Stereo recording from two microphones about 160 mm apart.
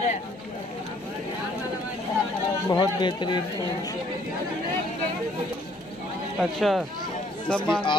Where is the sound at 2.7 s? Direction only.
25° left (ahead or behind).